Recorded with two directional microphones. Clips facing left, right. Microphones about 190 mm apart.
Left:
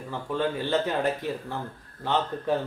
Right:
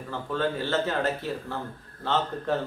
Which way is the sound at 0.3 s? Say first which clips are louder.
Left 1 dB; 15° left (ahead or behind).